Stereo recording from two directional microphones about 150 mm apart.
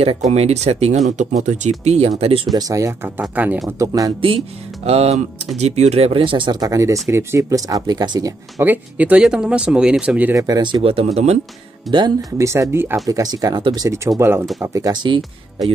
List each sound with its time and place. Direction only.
0.2 s speech: 45° right (ahead or behind)
2.5 s speech: 20° right (ahead or behind)
3.2 s speech: 10° right (ahead or behind)
3.6 s speech: 20° right (ahead or behind)
4.8 s speech: 45° right (ahead or behind); by 8.3 s 30° right (ahead or behind)
8.5 s speech: 10° right (ahead or behind)
10.3 s speech: 25° right (ahead or behind); by 11.1 s 40° right (ahead or behind)
11.9 s speech: centre (ahead or behind)
12.4 s speech: 20° right (ahead or behind)